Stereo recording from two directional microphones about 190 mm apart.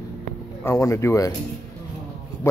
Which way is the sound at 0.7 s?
15° left (ahead or behind).